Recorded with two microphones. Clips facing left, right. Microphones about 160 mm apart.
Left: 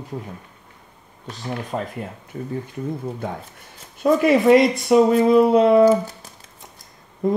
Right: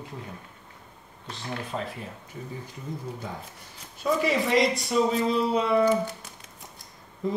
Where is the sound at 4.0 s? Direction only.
55° left (ahead or behind).